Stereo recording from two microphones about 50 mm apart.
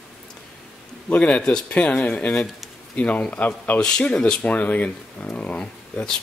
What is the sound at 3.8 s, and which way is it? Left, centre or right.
Speech, left.